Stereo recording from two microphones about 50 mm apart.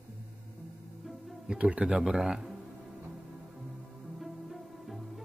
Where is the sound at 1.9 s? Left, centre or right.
Centre.